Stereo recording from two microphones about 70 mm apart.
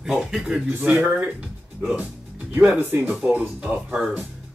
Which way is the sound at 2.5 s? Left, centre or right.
Right.